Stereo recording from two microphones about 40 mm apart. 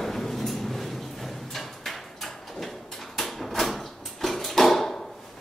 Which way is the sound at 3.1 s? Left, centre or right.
Centre.